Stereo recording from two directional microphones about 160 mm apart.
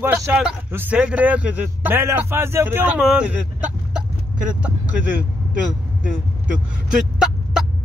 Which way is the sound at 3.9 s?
5° right (ahead or behind).